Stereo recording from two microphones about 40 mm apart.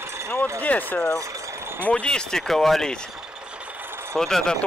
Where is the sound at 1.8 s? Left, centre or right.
Left.